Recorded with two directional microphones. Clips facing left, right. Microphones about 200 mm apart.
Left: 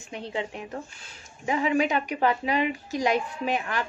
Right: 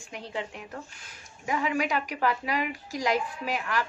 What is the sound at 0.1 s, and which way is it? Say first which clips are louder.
A woman's voice: left 4 dB; 20° left (ahead or behind).